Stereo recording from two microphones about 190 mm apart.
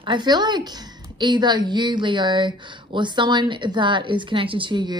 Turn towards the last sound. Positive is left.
turn(degrees=-25)  # may be behind; listen again after turning